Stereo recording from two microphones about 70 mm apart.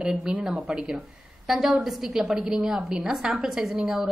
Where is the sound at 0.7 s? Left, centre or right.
Centre.